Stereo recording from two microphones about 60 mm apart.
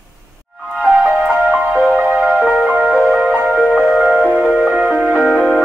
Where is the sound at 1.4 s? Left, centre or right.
Right.